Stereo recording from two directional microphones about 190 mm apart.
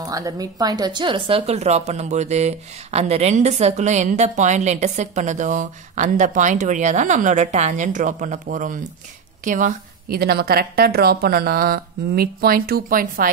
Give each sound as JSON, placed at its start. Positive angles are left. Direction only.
{"t": 0.0, "sound": "a woman's voice", "side_deg": -20}